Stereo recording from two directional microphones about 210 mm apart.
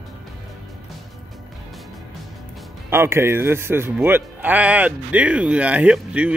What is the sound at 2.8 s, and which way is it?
Speech, 10° right (ahead or behind).